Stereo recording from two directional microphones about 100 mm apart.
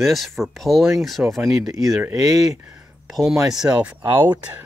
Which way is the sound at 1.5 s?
35° right (ahead or behind).